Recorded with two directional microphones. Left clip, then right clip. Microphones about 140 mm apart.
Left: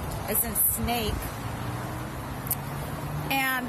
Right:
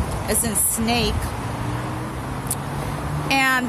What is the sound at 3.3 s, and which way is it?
Speech, 20° right (ahead or behind).